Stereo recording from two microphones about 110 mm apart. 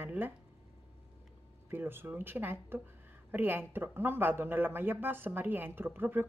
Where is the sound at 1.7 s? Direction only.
20° right (ahead or behind).